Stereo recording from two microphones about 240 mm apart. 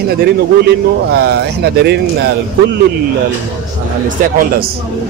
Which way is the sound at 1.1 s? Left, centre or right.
Right.